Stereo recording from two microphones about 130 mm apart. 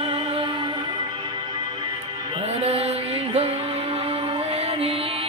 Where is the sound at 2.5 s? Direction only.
50° right (ahead or behind).